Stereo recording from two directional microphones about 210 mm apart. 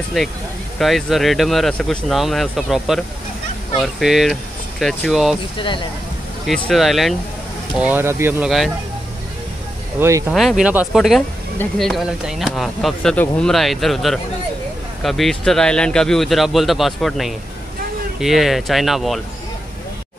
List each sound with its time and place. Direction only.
0.7 s speech: centre (ahead or behind)
5.6 s speech: 25° left (ahead or behind)
6.4 s speech: centre (ahead or behind)
9.9 s speech: 15° right (ahead or behind)
10.3 s speech: centre (ahead or behind)